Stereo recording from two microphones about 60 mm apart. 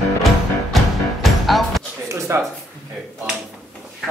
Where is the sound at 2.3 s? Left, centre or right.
Right.